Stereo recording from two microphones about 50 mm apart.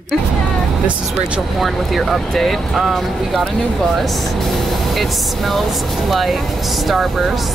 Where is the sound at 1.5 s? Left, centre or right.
Centre.